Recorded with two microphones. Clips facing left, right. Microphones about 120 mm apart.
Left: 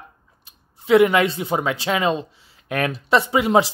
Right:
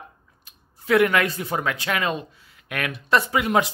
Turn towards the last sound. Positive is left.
turn(degrees=25)  # may be behind; listen again after turning